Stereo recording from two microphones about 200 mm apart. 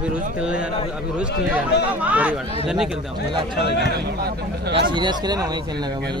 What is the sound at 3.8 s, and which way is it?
A man's voice, 55° right (ahead or behind).